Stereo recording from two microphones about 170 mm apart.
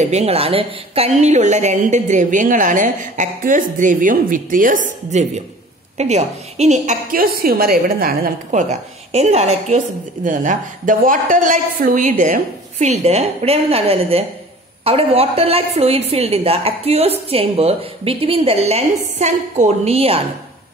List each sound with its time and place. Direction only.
0.0 s a woman's voice: 40° right (ahead or behind)